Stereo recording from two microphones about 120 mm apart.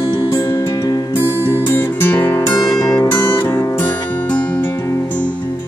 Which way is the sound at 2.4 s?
30° left (ahead or behind).